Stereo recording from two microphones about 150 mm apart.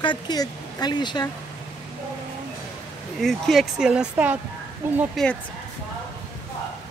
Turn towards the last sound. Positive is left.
turn(degrees=5)  # may be behind; listen again after turning